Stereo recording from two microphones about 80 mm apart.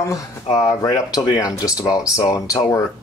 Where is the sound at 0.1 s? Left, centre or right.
Left.